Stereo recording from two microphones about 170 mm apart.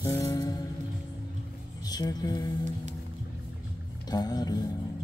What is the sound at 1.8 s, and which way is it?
Speech, 20° left (ahead or behind).